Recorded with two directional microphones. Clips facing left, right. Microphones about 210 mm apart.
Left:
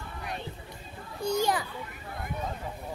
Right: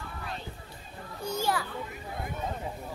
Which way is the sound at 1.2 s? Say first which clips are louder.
Left 3 dB; 15° left (ahead or behind).